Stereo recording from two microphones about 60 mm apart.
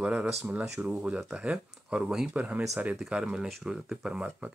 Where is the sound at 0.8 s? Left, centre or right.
Right.